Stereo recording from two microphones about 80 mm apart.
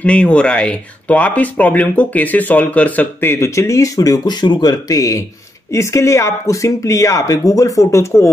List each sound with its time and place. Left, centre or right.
0.0 s speech: centre; by 4.2 s left
4.3 s speech: left